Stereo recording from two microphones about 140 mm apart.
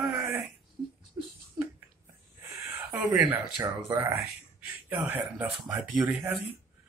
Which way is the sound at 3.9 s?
15° right (ahead or behind).